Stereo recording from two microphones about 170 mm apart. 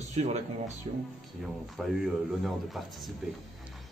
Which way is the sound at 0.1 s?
40° right (ahead or behind).